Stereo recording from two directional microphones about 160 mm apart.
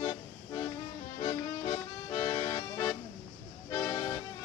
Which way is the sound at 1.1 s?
30° left (ahead or behind).